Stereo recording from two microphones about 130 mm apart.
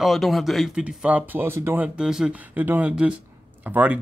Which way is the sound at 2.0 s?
5° right (ahead or behind).